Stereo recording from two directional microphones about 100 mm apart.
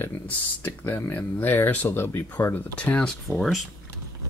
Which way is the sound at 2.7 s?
15° left (ahead or behind).